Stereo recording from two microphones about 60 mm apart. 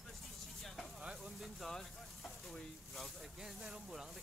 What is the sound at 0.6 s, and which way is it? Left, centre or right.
Sizzle, centre.